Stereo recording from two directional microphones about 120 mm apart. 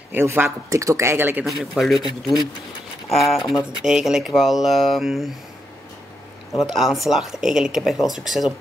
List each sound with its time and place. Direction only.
0.1 s speech: 20° right (ahead or behind)
1.4 s speech: centre (ahead or behind)
6.7 s speech: centre (ahead or behind)